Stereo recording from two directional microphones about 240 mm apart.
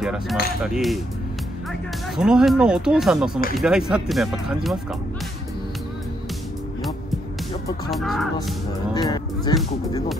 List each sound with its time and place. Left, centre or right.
0.0 s speech: centre
7.9 s speech: centre
8.9 s speech: centre